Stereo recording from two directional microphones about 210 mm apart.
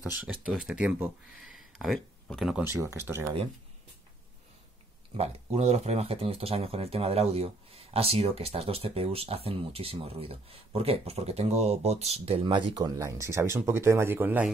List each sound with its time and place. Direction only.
0.0 s speech: 5° right (ahead or behind)
2.7 s speech: 15° right (ahead or behind)
5.1 s speech: 30° right (ahead or behind); by 14.5 s 10° right (ahead or behind)